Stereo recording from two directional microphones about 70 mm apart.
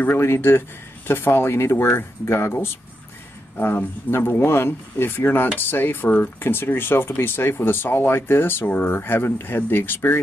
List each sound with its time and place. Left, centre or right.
0.0 s speech: left